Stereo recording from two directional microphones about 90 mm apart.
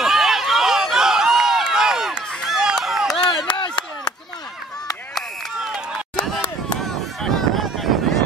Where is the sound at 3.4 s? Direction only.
55° left (ahead or behind).